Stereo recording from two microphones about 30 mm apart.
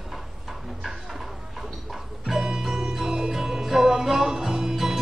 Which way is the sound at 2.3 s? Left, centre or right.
Right.